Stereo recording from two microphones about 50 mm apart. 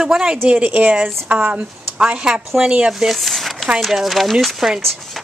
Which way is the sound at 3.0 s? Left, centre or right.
Centre.